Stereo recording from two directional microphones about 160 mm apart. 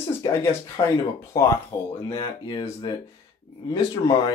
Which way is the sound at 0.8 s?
35° left (ahead or behind).